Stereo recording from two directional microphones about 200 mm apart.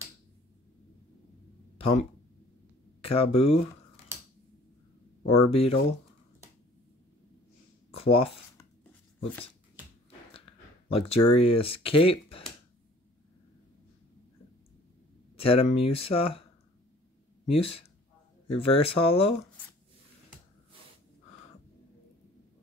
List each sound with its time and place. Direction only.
1.8 s speech: 30° left (ahead or behind)
5.5 s speech: 30° left (ahead or behind)
7.9 s a sound: 30° left (ahead or behind)
10.9 s speech: 30° left (ahead or behind)
15.3 s speech: 30° left (ahead or behind)
17.5 s speech: 30° left (ahead or behind)